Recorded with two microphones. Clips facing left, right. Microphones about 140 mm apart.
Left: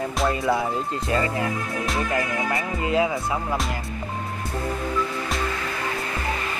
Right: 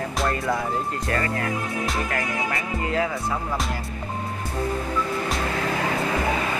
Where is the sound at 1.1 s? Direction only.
20° left (ahead or behind).